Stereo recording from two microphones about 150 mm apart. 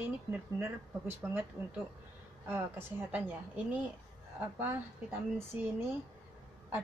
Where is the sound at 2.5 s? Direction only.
15° right (ahead or behind).